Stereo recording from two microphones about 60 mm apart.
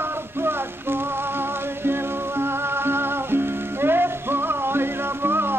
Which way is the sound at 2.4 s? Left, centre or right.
Right.